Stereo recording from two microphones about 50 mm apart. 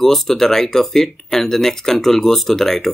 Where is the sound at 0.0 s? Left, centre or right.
Centre.